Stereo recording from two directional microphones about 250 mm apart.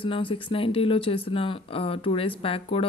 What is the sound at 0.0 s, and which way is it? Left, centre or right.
Speech, left.